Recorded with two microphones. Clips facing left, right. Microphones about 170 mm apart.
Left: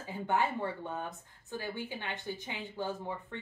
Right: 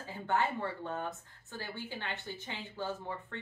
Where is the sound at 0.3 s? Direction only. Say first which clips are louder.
Left 1 dB; 15° left (ahead or behind).